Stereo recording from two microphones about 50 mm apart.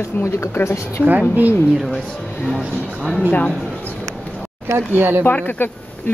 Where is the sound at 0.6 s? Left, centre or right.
Left.